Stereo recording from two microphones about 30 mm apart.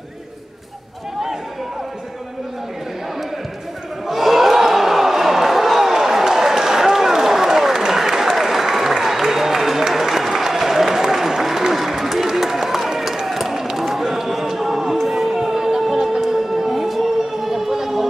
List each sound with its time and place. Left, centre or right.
4.1 s crowd: centre
9.9 s applause: centre
11.7 s a sound: centre
12.4 s run: centre
13.7 s a sound: centre
15.8 s music: centre